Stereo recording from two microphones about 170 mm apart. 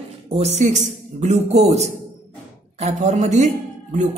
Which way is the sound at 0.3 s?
40° right (ahead or behind).